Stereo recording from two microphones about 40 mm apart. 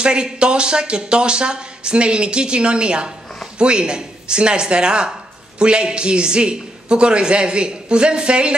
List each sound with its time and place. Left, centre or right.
0.0 s speech: right